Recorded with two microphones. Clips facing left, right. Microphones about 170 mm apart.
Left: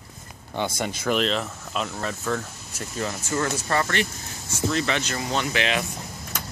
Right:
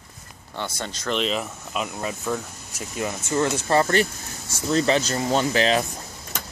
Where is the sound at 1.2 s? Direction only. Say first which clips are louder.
Even; 5° right (ahead or behind); by 3.9 s 25° right (ahead or behind).